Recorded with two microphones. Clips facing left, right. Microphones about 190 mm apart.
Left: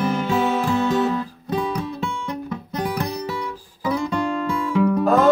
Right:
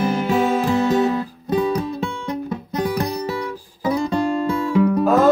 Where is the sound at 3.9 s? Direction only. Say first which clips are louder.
Right 3 dB; 40° right (ahead or behind).